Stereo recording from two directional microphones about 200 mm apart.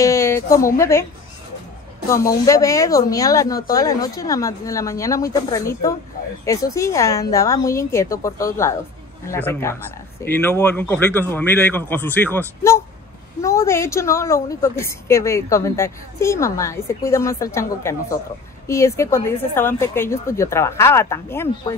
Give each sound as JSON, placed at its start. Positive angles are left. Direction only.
{"t": 0.0, "sound": "a sound", "side_deg": 15}
{"t": 0.7, "sound": "a woman's voice", "side_deg": 15}
{"t": 2.0, "sound": "a woman's voice", "side_deg": 15}